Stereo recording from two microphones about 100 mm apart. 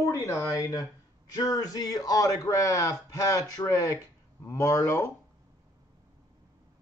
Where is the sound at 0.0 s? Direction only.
30° left (ahead or behind).